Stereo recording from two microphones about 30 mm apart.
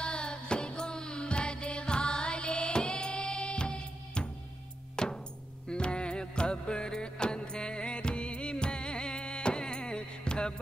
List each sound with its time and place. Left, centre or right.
0.0 s music: left